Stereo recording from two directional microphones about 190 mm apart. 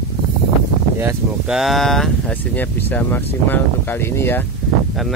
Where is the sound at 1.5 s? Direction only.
Centre (ahead or behind).